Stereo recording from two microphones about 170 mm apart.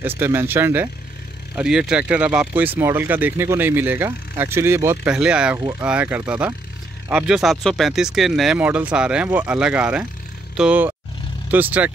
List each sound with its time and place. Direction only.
0.0 s speech: 10° right (ahead or behind)
5.6 s speech: 20° right (ahead or behind)